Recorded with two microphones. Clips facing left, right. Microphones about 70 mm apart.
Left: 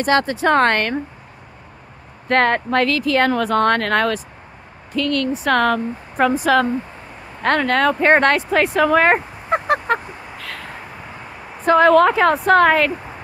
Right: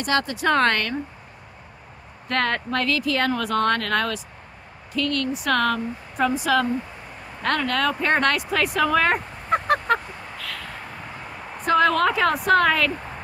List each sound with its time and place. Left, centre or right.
0.0 s speech: left
2.2 s speech: left
9.5 s honk: centre
10.3 s a sound: left
11.6 s speech: left
12.9 s a sound: centre